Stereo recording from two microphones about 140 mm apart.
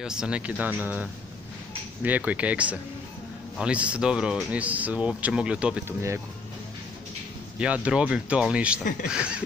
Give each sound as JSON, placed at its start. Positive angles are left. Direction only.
{"t": 0.0, "sound": "speech", "side_deg": -5}
{"t": 2.0, "sound": "speech", "side_deg": -10}
{"t": 5.9, "sound": "speech", "side_deg": -15}
{"t": 7.5, "sound": "speech", "side_deg": -10}